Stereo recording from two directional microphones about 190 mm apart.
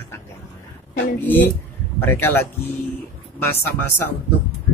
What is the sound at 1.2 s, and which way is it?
A man's voice, 10° left (ahead or behind).